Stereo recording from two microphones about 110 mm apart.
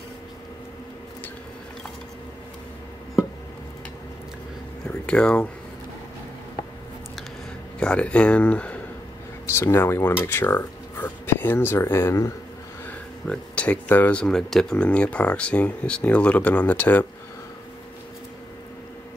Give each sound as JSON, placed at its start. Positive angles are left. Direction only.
{"t": 4.8, "sound": "speech", "side_deg": 10}
{"t": 7.8, "sound": "speech", "side_deg": 10}
{"t": 9.6, "sound": "speech", "side_deg": 20}
{"t": 12.8, "sound": "a sound", "side_deg": 10}
{"t": 14.2, "sound": "speech", "side_deg": 5}